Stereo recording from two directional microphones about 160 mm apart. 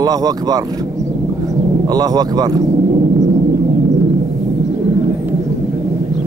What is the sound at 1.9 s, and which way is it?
Speech, 25° right (ahead or behind).